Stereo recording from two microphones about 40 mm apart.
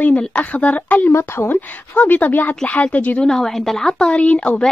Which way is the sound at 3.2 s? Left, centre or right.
Centre.